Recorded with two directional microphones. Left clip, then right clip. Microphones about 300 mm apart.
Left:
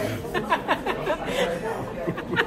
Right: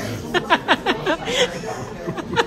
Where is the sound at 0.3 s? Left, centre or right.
Right.